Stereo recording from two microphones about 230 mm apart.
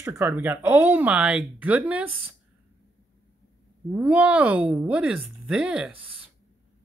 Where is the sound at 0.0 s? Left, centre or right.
Centre.